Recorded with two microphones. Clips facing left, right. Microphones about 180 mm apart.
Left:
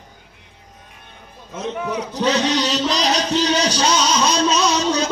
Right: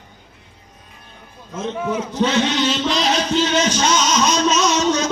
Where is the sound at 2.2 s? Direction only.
40° left (ahead or behind).